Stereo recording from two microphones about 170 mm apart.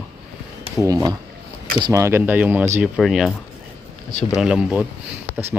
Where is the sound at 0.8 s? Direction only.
20° right (ahead or behind).